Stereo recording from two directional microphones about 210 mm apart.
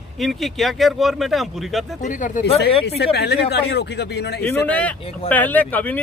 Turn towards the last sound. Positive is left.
turn(degrees=10)  # may be behind; listen again after turning